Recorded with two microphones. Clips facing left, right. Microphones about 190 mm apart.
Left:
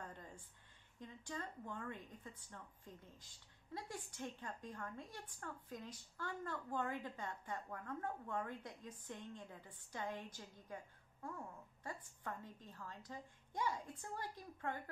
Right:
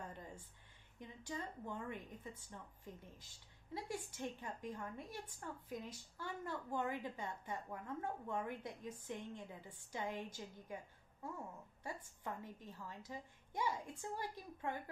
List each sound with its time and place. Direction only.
0.9 s a woman's voice: 15° right (ahead or behind)
3.7 s a woman's voice: 10° right (ahead or behind)
8.8 s a woman's voice: 25° right (ahead or behind)
9.5 s a woman's voice: 10° right (ahead or behind)